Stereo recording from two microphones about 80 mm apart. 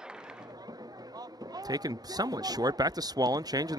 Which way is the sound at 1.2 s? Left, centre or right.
Right.